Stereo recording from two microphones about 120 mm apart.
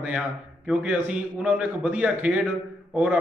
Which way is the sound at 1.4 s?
10° right (ahead or behind).